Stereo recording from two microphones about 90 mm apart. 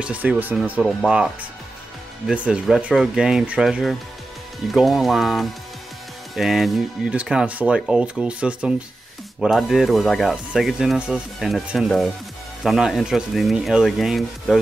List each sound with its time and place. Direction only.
0.0 s speech: 15° right (ahead or behind)
0.8 s speech: 5° right (ahead or behind)
9.4 s speech: centre (ahead or behind)
11.3 s speech: centre (ahead or behind)